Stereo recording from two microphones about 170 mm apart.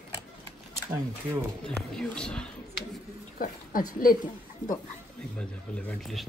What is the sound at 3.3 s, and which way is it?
Speech, 55° left (ahead or behind).